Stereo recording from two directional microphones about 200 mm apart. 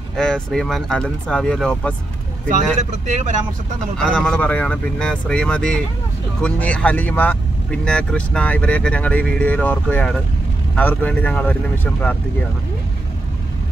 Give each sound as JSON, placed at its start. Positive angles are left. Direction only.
{"t": 0.1, "sound": "speech", "side_deg": 5}
{"t": 2.4, "sound": "speech", "side_deg": -35}
{"t": 4.0, "sound": "speech", "side_deg": 5}